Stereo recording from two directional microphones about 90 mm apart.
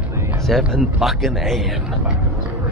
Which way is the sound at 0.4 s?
Centre (ahead or behind).